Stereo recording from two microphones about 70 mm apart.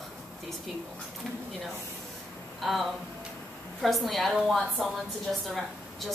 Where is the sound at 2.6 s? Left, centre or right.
Centre.